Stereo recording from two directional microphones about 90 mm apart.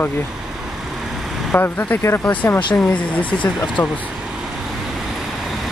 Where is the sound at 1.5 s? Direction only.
20° left (ahead or behind).